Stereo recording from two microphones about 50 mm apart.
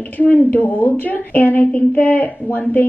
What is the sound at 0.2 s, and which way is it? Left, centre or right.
A woman's voice, left.